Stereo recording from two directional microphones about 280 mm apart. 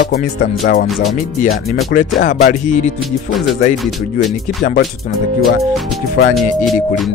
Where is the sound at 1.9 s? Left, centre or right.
Left.